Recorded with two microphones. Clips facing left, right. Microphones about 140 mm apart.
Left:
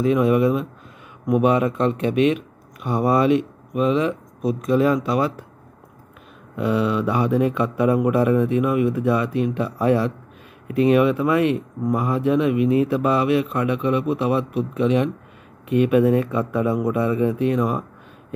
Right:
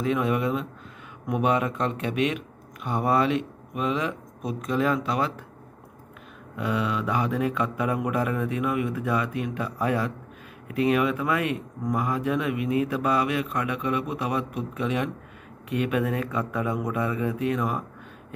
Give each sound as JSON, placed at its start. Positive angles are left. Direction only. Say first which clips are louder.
{"t": 0.0, "sound": "speech", "louder": "left 7 dB", "side_deg": 20}
{"t": 6.6, "sound": "speech", "louder": "left 7 dB", "side_deg": 30}